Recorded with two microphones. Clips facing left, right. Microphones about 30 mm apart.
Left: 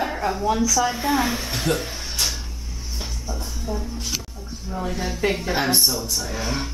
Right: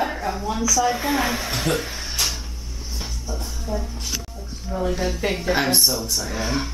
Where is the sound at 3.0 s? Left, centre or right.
Centre.